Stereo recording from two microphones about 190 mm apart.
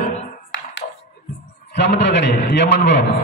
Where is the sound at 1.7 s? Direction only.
65° left (ahead or behind).